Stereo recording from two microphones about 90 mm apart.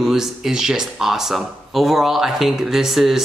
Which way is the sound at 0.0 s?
5° right (ahead or behind).